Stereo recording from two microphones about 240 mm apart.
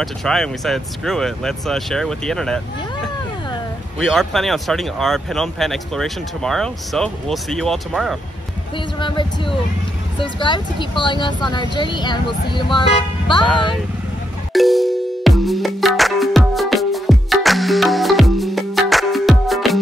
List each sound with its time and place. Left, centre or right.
0.0 s speech: centre
4.0 s speech: centre
8.7 s speech: centre
14.5 s music: centre